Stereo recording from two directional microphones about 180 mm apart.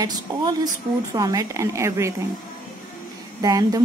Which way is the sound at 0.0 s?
20° right (ahead or behind).